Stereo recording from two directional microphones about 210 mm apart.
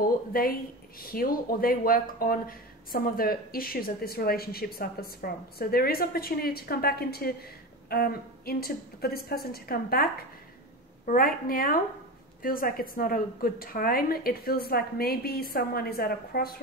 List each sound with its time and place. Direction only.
0.0 s speech: 45° left (ahead or behind)
11.1 s speech: 45° left (ahead or behind)